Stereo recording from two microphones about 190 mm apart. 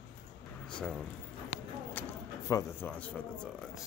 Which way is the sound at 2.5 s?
15° left (ahead or behind).